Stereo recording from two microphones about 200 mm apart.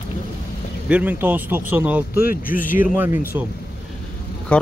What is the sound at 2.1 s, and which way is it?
Speech, 45° left (ahead or behind).